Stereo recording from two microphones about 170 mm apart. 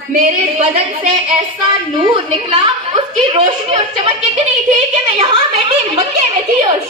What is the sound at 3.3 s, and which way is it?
Speech, 35° right (ahead or behind).